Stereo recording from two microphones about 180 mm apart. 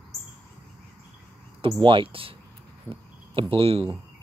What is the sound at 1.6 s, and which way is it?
Speech, 30° right (ahead or behind).